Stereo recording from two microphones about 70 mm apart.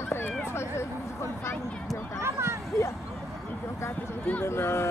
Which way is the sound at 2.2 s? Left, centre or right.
Right.